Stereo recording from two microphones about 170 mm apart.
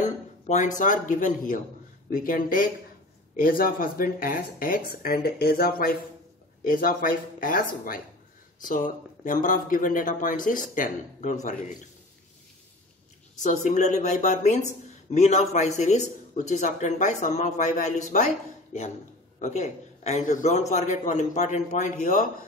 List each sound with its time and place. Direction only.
0.7 s speech: 50° left (ahead or behind)
8.6 s speech: 50° left (ahead or behind)
13.4 s speech: 45° left (ahead or behind)
19.4 s speech: 40° left (ahead or behind)